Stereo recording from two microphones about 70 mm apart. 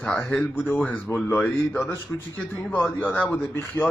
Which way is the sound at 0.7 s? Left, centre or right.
Left.